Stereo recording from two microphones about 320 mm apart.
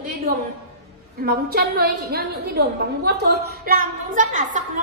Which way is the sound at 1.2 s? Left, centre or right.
Right.